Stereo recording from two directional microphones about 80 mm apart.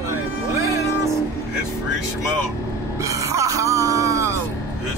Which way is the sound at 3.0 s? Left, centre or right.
Right.